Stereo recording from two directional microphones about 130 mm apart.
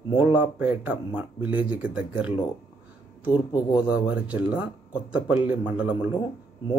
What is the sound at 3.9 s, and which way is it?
Speech, 10° right (ahead or behind).